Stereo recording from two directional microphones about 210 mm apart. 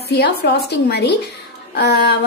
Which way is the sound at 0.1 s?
50° left (ahead or behind).